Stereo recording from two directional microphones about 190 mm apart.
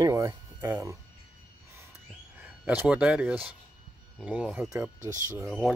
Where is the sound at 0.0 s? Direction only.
15° right (ahead or behind).